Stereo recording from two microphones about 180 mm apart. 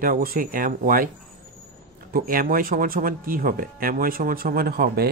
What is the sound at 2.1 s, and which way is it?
Speech, 55° right (ahead or behind).